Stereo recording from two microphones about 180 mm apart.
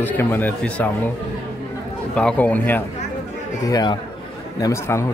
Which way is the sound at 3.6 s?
25° left (ahead or behind).